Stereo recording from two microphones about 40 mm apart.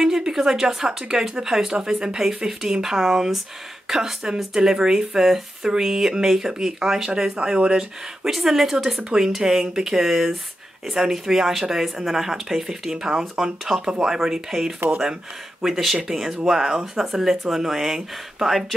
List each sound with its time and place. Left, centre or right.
0.0 s speech: centre
7.3 s speech: right
8.2 s speech: centre